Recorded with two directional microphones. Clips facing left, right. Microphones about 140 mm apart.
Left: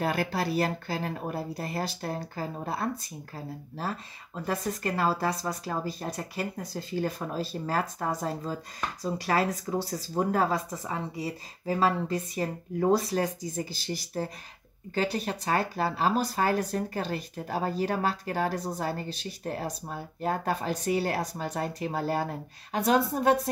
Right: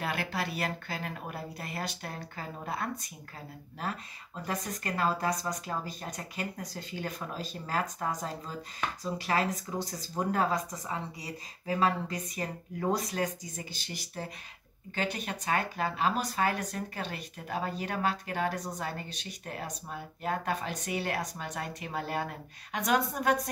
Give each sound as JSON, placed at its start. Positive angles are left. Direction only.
{"t": 0.0, "sound": "speech", "side_deg": 40}